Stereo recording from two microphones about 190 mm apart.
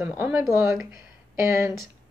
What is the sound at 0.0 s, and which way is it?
Speech, 5° right (ahead or behind).